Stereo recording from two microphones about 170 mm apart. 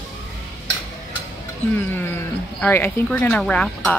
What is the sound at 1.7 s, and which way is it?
A woman's voice, 10° left (ahead or behind).